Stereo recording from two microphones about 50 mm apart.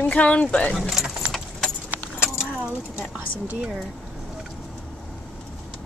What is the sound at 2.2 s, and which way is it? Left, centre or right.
Keys jangling, centre.